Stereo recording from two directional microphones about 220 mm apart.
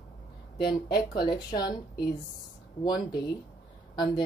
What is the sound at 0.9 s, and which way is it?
Speech, 20° left (ahead or behind).